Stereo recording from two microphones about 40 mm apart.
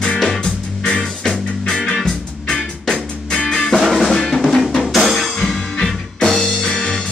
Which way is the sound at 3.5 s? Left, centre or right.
Centre.